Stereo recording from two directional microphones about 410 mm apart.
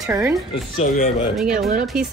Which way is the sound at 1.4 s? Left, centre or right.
Centre.